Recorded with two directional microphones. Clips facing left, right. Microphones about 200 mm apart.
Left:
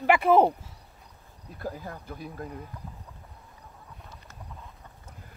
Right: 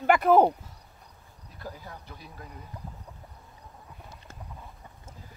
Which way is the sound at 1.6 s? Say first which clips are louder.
Left 5 dB; 50° left (ahead or behind).